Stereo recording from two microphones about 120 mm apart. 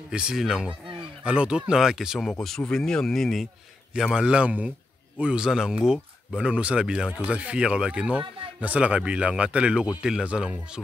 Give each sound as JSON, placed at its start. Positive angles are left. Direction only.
{"t": 0.1, "sound": "speech", "side_deg": -5}